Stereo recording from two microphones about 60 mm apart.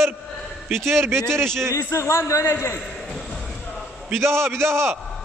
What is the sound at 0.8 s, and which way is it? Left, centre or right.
Speech, right.